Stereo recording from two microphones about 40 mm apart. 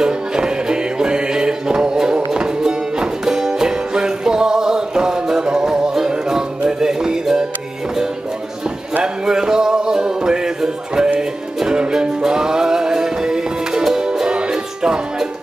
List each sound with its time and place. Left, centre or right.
0.0 s music: centre
9.0 s music: centre